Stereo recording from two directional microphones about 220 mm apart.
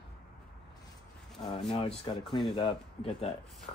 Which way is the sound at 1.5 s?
25° left (ahead or behind).